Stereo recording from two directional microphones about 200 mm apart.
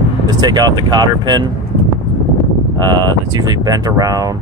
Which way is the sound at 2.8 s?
20° right (ahead or behind).